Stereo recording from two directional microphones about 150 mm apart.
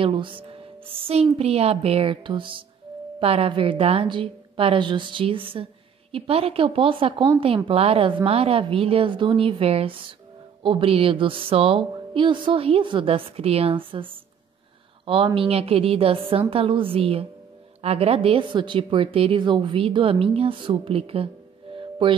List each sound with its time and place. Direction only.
0.0 s a woman's voice: 35° right (ahead or behind)
21.7 s music: 35° right (ahead or behind)